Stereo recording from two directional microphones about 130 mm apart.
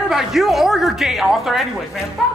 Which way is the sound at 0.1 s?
Centre (ahead or behind).